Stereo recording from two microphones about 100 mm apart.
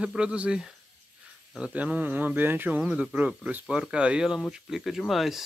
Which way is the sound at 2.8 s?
5° right (ahead or behind).